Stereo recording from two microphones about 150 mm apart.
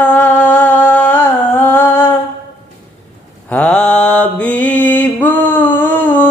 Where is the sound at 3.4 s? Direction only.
5° left (ahead or behind).